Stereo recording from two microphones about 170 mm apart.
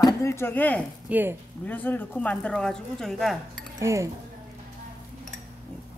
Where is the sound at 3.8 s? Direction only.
15° right (ahead or behind).